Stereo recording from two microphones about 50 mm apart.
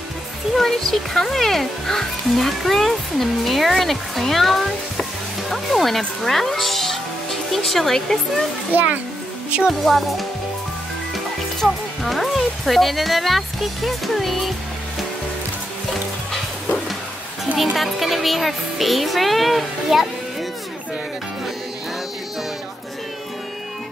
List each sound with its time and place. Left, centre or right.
0.6 s a child's voice: centre
8.7 s a child's voice: right
9.7 s a child's voice: centre
11.6 s speech: centre
17.7 s a child's voice: centre